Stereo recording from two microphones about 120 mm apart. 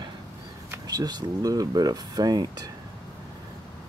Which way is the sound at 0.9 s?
35° right (ahead or behind).